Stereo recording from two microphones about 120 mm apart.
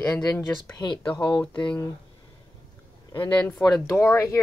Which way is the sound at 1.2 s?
10° left (ahead or behind).